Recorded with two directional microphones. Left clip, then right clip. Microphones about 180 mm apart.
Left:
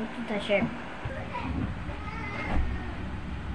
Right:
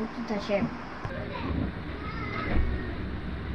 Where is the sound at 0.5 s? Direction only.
5° right (ahead or behind).